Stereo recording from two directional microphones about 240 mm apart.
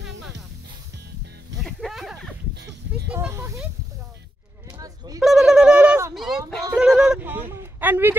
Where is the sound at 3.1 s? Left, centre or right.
Centre.